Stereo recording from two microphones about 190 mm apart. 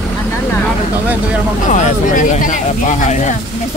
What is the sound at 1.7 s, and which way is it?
Speech, 40° left (ahead or behind).